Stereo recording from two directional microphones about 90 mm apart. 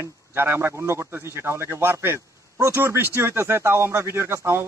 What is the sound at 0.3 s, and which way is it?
A man's voice, 25° right (ahead or behind).